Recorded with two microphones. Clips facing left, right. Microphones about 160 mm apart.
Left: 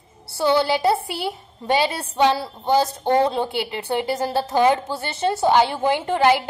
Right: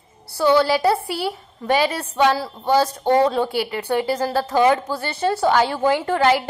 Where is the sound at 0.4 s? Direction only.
20° left (ahead or behind).